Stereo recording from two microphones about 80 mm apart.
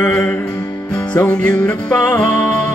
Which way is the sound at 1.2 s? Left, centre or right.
Centre.